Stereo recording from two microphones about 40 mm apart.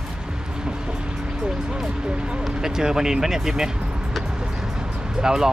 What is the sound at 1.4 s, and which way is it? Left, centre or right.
Speech, centre.